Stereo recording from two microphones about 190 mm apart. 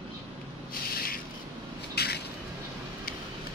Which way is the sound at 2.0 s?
60° left (ahead or behind).